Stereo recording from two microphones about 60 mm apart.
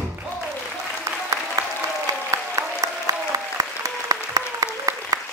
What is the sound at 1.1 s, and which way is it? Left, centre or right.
Applause, right.